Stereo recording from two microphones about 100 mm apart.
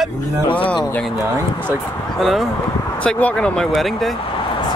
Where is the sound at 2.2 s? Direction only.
Centre (ahead or behind).